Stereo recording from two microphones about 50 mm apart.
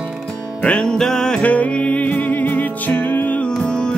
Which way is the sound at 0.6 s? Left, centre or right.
Centre.